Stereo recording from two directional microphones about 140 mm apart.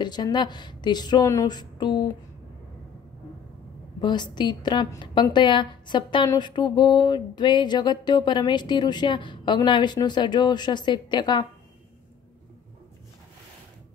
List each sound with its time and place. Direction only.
0.0 s a woman's voice: 30° left (ahead or behind)
4.0 s a woman's voice: 30° left (ahead or behind)